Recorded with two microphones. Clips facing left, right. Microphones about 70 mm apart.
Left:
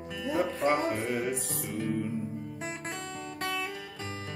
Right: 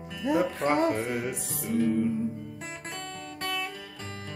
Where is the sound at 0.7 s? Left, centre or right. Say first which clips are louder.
Right 3 dB; centre.